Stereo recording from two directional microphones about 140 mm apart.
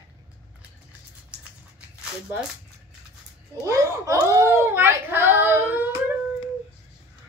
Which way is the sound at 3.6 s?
20° right (ahead or behind).